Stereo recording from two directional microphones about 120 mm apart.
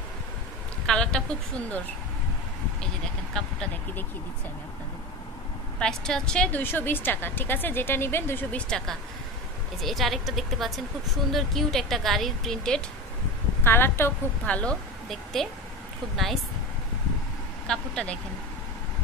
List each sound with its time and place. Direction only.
0.8 s a sound: 5° left (ahead or behind)
3.4 s speech: 5° left (ahead or behind)
5.8 s a woman's voice: 5° left (ahead or behind)
13.7 s a woman's voice: 20° left (ahead or behind)
17.6 s a woman's voice: 5° left (ahead or behind)